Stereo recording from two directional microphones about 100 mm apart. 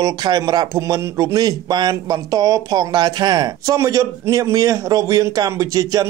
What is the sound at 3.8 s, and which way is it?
Speech, 30° right (ahead or behind).